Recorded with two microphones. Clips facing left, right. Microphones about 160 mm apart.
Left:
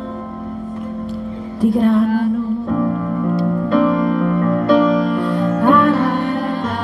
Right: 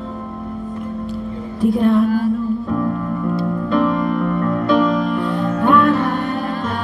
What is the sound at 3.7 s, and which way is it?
Music, 40° left (ahead or behind).